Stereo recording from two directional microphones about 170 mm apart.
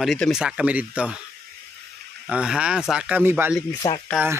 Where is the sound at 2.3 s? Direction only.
5° right (ahead or behind).